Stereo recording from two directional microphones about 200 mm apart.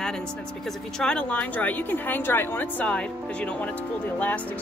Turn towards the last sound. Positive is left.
turn(degrees=5)  # may be behind; listen again after turning